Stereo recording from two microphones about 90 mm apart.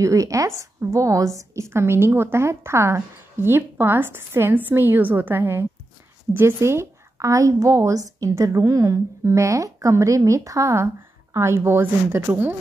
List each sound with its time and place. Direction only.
0.0 s a woman's voice: 35° right (ahead or behind)